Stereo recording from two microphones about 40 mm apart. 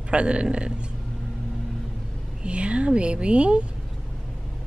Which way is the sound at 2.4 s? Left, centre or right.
Right.